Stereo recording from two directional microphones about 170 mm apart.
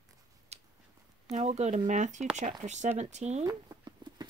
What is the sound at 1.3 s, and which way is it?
Speech, 40° right (ahead or behind).